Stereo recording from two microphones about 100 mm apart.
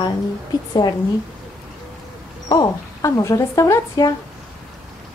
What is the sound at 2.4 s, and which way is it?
Speech, 45° left (ahead or behind).